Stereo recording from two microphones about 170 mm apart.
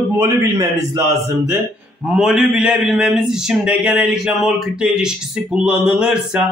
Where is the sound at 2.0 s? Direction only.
5° right (ahead or behind).